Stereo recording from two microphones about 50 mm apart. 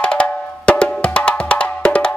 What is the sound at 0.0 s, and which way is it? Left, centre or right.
Music, left.